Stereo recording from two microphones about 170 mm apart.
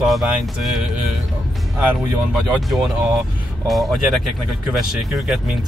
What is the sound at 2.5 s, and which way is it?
Speech, 5° right (ahead or behind).